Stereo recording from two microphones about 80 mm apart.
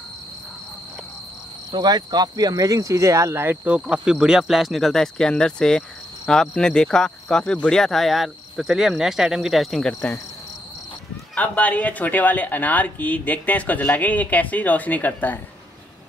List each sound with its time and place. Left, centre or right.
1.7 s speech: right
3.8 s speech: centre
11.3 s speech: centre